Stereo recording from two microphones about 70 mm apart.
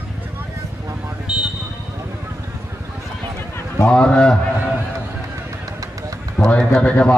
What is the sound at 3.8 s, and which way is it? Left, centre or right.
Speech, centre.